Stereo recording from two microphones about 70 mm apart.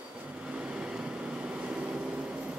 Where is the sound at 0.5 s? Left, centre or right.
Centre.